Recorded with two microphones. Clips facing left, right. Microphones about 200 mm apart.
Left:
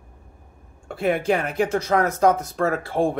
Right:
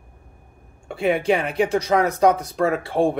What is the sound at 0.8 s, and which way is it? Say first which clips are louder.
Speech: right 2 dB; centre (ahead or behind).